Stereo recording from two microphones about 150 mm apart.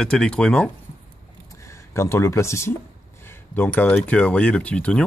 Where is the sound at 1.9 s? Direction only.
20° left (ahead or behind).